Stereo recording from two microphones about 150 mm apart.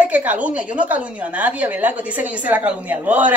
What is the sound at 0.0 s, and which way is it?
A woman's voice, 10° right (ahead or behind).